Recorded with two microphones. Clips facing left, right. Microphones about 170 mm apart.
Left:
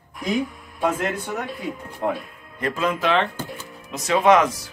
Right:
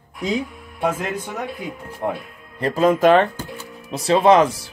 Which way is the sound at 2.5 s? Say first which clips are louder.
Right 7 dB; 40° right (ahead or behind).